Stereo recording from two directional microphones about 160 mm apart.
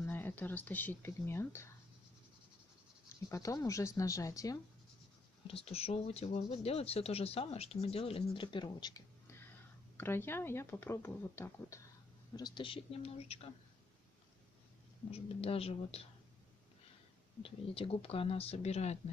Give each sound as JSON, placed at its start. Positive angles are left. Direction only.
{"t": 0.0, "sound": "speech", "side_deg": 10}
{"t": 3.3, "sound": "speech", "side_deg": 20}
{"t": 5.5, "sound": "speech", "side_deg": 40}
{"t": 12.4, "sound": "speech", "side_deg": 30}
{"t": 15.0, "sound": "speech", "side_deg": 40}
{"t": 17.4, "sound": "speech", "side_deg": 35}